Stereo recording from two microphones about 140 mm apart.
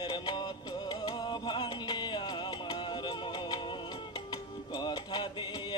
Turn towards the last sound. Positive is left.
turn(degrees=30)  # may be behind; listen again after turning